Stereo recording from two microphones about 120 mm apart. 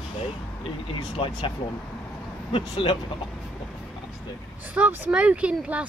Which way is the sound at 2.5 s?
50° left (ahead or behind).